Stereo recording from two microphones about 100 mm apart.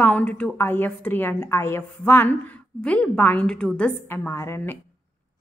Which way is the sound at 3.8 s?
20° left (ahead or behind).